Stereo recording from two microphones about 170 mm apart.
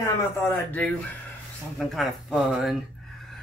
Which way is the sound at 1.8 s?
Centre (ahead or behind).